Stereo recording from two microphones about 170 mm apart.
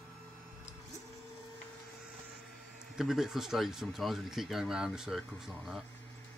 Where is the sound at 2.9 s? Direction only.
Centre (ahead or behind).